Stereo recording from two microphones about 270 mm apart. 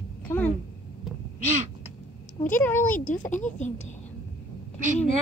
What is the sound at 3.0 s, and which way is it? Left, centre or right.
Speech, left.